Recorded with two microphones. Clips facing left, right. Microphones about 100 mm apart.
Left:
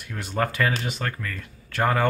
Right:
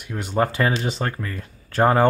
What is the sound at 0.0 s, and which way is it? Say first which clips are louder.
Speech: right 4 dB; 20° right (ahead or behind).